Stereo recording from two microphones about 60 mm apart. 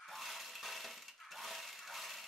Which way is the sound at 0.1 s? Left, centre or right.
Centre.